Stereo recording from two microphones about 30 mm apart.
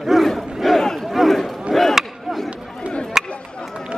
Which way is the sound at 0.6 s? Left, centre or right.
Centre.